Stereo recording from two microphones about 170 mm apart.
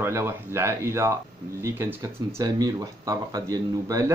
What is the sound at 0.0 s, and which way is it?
Speech, 15° right (ahead or behind).